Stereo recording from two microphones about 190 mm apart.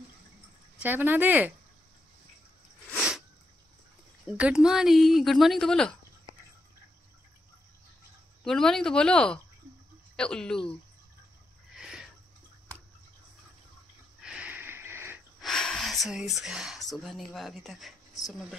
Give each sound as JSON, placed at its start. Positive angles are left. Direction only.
{"t": 0.7, "sound": "speech", "side_deg": -10}
{"t": 2.9, "sound": "sneeze", "side_deg": -5}
{"t": 4.3, "sound": "speech", "side_deg": -5}
{"t": 8.5, "sound": "speech", "side_deg": 5}
{"t": 11.7, "sound": "a sound", "side_deg": -5}
{"t": 14.2, "sound": "sniff", "side_deg": -5}
{"t": 15.4, "sound": "speech", "side_deg": 0}